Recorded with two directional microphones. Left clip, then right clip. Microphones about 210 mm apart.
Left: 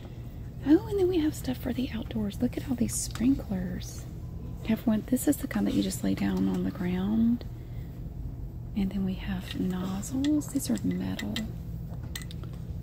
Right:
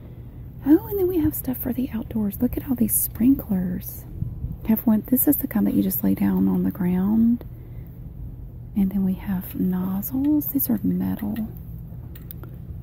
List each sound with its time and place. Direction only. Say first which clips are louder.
0.7 s a woman's voice: right 5 dB; 25° right (ahead or behind)
8.7 s a woman's voice: right 8 dB; 25° right (ahead or behind)